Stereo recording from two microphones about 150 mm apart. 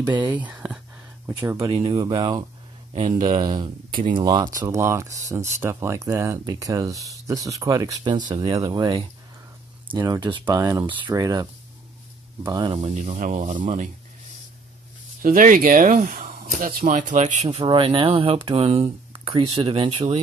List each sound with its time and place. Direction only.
0.2 s speech: 10° right (ahead or behind)
1.6 s speech: 40° right (ahead or behind)
2.9 s speech: 55° right (ahead or behind)
3.6 s speech: 30° right (ahead or behind)
12.4 s speech: 35° right (ahead or behind)
12.9 s speech: 50° right (ahead or behind)
15.2 s speech: 65° right (ahead or behind); by 20.2 s 40° right (ahead or behind)